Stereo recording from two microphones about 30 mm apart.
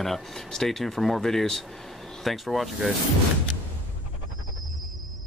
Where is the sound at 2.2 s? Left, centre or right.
Centre.